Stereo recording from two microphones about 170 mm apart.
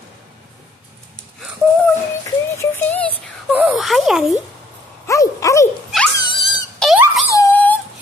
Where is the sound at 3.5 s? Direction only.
5° right (ahead or behind).